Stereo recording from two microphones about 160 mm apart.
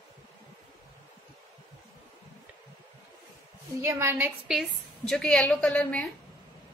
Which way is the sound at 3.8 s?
15° right (ahead or behind).